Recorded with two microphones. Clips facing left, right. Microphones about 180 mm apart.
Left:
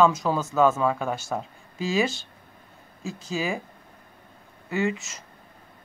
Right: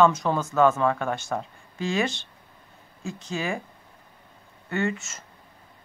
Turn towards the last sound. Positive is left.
turn(degrees=0)  # may be behind; listen again after turning